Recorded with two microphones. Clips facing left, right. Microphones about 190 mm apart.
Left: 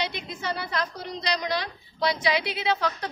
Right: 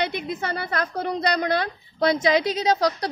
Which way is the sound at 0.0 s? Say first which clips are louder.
Right 5 dB; 55° right (ahead or behind).